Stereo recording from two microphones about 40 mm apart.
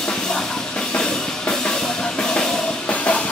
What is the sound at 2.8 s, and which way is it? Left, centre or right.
Music, left.